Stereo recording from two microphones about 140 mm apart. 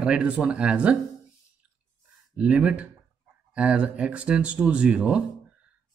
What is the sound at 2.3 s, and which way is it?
Speech, 5° right (ahead or behind).